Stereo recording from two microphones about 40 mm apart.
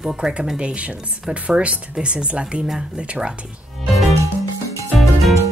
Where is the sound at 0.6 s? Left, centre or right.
Right.